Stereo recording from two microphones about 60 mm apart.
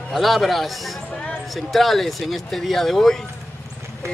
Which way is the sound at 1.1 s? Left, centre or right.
Centre.